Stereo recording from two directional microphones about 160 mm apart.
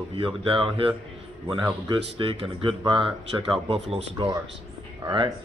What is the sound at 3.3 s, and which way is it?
Speech, 20° right (ahead or behind).